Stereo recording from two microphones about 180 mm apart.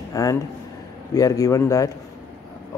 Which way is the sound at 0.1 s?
20° left (ahead or behind).